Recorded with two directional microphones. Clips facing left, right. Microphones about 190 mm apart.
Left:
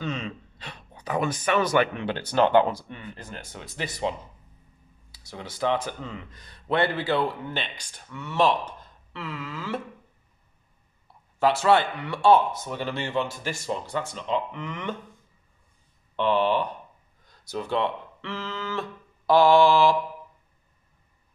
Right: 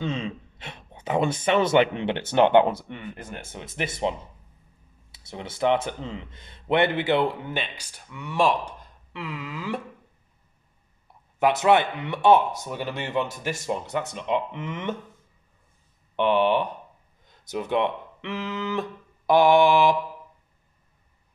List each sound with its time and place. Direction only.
0.0 s speech: 25° right (ahead or behind)
5.1 s speech: 25° right (ahead or behind)
7.6 s speech: 10° right (ahead or behind)
11.3 s speech: 20° right (ahead or behind)
12.6 s speech: 10° right (ahead or behind)
16.2 s speech: 20° right (ahead or behind)